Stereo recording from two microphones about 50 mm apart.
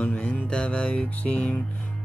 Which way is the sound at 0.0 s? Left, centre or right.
Left.